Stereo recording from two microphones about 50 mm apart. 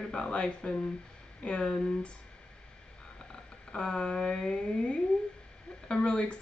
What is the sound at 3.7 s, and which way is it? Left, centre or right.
Speech, centre.